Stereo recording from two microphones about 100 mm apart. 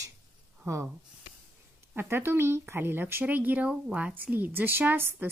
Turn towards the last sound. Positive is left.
turn(degrees=-20)  # may be behind; listen again after turning